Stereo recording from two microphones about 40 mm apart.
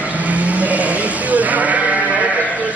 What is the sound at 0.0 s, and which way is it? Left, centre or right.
Sheep, right.